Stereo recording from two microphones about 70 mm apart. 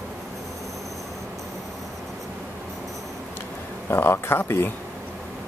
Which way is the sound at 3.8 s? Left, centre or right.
Left.